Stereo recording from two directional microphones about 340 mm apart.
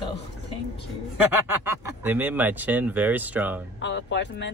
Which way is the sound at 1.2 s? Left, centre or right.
Centre.